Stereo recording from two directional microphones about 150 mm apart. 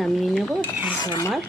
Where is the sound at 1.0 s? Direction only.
25° left (ahead or behind).